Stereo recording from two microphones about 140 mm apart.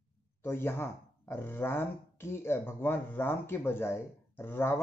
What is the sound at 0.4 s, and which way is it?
Speech, 15° left (ahead or behind).